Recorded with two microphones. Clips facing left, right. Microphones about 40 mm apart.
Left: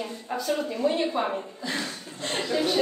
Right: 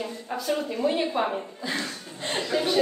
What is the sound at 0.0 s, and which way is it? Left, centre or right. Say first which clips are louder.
A woman's voice: even; centre.